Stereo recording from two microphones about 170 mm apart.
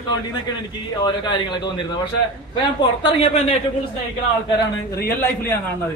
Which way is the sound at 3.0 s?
35° left (ahead or behind).